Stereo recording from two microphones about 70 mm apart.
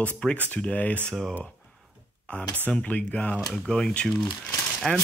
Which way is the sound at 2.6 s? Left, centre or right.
Centre.